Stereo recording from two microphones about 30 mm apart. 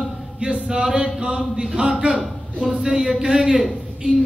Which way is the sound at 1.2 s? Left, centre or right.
Right.